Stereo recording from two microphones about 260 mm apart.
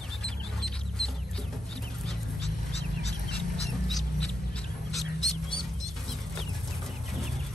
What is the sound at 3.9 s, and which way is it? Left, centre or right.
Mouse, centre.